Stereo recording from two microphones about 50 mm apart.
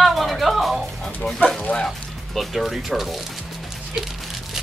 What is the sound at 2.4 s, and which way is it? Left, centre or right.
Speech, centre.